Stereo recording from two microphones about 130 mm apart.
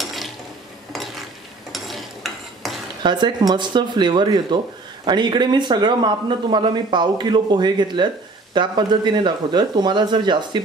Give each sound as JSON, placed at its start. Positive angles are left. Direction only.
{"t": 0.0, "sound": "a sound", "side_deg": 0}
{"t": 1.7, "sound": "stir", "side_deg": 0}
{"t": 3.0, "sound": "speech", "side_deg": -35}